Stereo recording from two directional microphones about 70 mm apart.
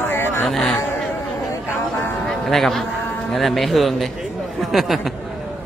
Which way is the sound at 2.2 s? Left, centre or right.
Centre.